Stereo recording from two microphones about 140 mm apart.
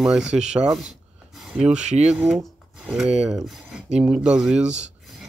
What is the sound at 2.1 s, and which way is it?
Speech, 5° right (ahead or behind).